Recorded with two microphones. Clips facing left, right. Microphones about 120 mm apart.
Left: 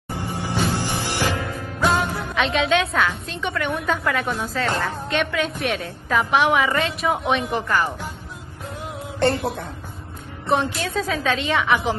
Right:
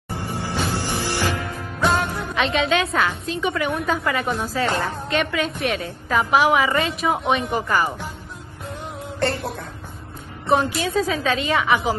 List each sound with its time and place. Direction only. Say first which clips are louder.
0.1 s music: left 1 dB; 15° left (ahead or behind)
1.8 s a woman's voice: even; centre (ahead or behind)
4.6 s a woman's voice: even; 10° right (ahead or behind)
4.9 s a woman's voice: even; centre (ahead or behind)
10.4 s a woman's voice: right 2 dB; centre (ahead or behind)